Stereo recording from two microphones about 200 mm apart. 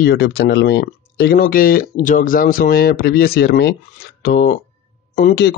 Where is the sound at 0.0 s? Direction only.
55° left (ahead or behind).